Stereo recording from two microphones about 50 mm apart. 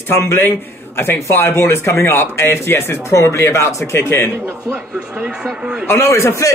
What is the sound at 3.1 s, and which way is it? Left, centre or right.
A man's voice, left.